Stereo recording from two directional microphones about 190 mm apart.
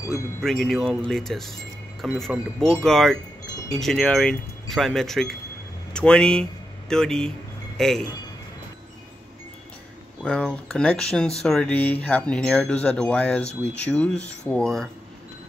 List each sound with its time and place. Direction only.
0.4 s speech: centre (ahead or behind)
10.2 s speech: 5° left (ahead or behind)